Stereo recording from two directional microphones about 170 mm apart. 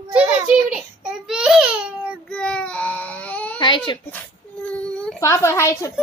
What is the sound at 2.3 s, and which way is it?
Baby cry, 5° left (ahead or behind).